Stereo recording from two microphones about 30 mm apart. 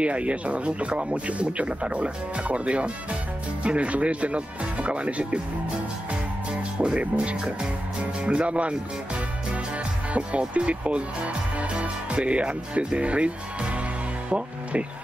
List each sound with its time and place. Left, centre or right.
0.0 s speech: right
6.8 s speech: right